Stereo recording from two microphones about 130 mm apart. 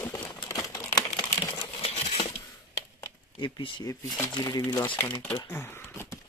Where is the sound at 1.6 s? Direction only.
50° left (ahead or behind).